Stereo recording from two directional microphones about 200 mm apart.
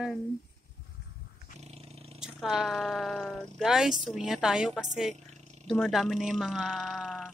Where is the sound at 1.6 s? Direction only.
30° right (ahead or behind).